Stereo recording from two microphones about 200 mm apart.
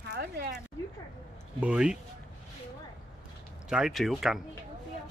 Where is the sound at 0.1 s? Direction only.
55° right (ahead or behind).